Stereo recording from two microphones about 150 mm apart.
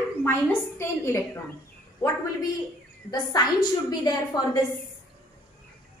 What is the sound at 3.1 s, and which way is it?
A woman's voice, 25° left (ahead or behind).